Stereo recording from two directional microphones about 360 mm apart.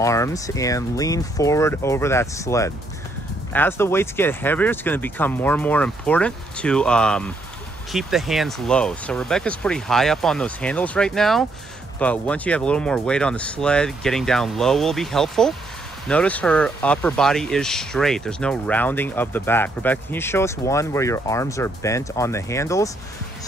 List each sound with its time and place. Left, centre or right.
0.0 s speech: centre